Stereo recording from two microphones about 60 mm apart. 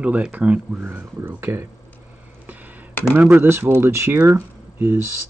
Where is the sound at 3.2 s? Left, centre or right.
Right.